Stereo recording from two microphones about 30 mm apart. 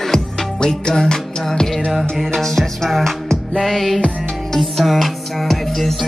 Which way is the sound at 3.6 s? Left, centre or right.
Centre.